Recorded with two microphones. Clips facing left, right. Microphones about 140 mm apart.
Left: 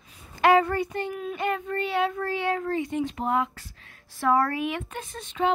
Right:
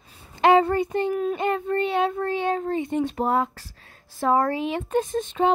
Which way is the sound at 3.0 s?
40° right (ahead or behind).